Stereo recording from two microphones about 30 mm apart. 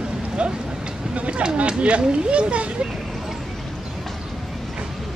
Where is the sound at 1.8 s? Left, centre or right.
Right.